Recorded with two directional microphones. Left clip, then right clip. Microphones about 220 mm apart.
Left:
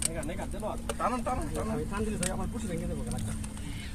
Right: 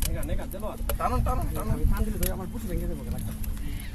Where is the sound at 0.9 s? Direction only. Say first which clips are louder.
Right 2 dB; 20° right (ahead or behind).